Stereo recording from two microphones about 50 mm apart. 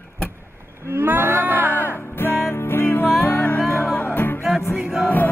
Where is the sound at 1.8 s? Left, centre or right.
Left.